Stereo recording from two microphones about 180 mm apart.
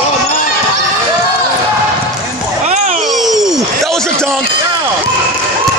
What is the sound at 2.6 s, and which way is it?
Music, 40° right (ahead or behind).